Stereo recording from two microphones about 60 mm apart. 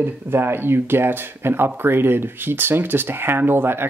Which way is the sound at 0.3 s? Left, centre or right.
Right.